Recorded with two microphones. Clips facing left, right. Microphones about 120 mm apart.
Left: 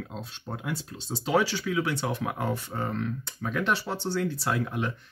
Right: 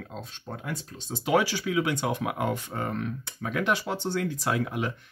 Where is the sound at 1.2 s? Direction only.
15° right (ahead or behind).